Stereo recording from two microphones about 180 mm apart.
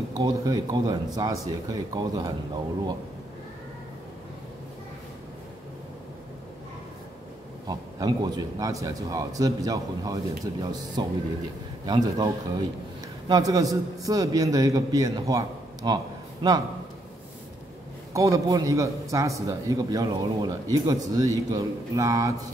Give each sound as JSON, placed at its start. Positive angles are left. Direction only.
{"t": 0.1, "sound": "a man's voice", "side_deg": -20}
{"t": 7.6, "sound": "a man's voice", "side_deg": -25}
{"t": 13.3, "sound": "a man's voice", "side_deg": -20}
{"t": 18.1, "sound": "a man's voice", "side_deg": -15}